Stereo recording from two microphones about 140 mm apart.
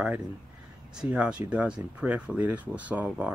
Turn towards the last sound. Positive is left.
turn(degrees=-10)  # may be behind; listen again after turning